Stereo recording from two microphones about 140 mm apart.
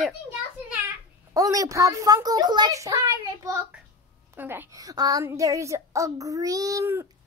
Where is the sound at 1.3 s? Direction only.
25° right (ahead or behind).